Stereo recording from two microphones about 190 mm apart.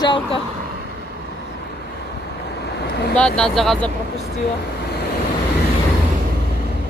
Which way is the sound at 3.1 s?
5° left (ahead or behind).